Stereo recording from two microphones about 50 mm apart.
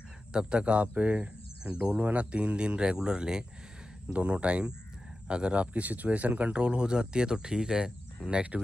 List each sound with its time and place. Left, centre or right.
0.3 s speech: centre